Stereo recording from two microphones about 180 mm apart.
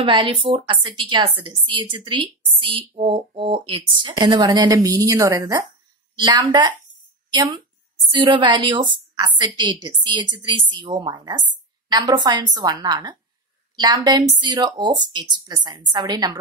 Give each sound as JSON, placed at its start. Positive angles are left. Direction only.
{"t": 0.0, "sound": "a woman's voice", "side_deg": -25}